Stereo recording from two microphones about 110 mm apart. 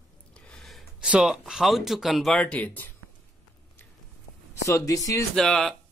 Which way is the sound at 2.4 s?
15° left (ahead or behind).